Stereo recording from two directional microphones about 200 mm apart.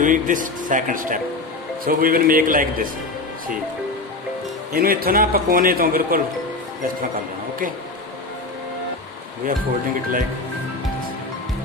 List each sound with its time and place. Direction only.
0.0 s a man's voice: 40° right (ahead or behind)
4.7 s a man's voice: 45° right (ahead or behind)